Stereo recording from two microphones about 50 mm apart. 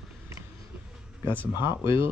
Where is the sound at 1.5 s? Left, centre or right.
Right.